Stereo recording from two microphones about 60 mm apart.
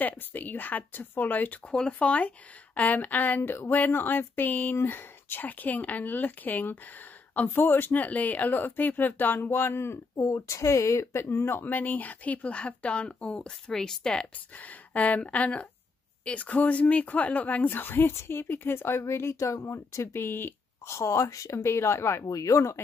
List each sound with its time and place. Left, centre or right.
0.0 s a woman's voice: left
1.7 s speech: centre
2.0 s a woman's voice: left
10.1 s speech: left; by 14.2 s centre
14.6 s a woman's voice: left
18.9 s speech: left
20.8 s a woman's voice: left
22.2 s speech: left